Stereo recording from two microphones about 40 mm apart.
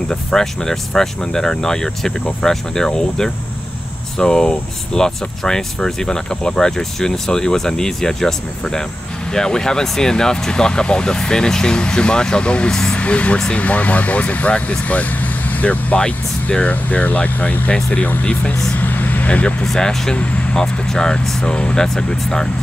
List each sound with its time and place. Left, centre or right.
0.1 s speech: centre; by 17.6 s left
18.2 s speech: left
18.8 s vehicle: left
19.6 s speech: centre